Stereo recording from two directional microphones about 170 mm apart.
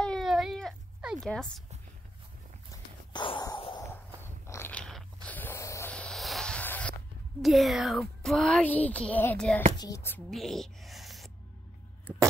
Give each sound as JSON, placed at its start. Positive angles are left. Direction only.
{"t": 0.0, "sound": "cat", "side_deg": 0}
{"t": 2.7, "sound": "a sound", "side_deg": 25}
{"t": 3.8, "sound": "biting", "side_deg": 15}
{"t": 7.4, "sound": "speech", "side_deg": 0}
{"t": 9.8, "sound": "speech", "side_deg": 20}
{"t": 10.3, "sound": "a sound", "side_deg": 0}